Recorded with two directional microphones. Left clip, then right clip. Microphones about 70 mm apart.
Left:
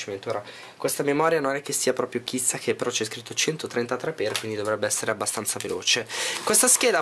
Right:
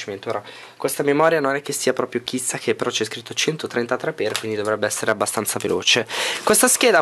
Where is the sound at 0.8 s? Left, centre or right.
Right.